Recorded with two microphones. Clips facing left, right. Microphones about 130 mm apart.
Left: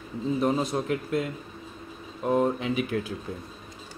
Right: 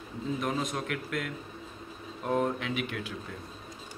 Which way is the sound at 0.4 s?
30° left (ahead or behind).